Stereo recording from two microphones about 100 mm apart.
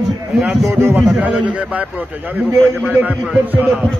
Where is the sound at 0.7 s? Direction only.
20° right (ahead or behind).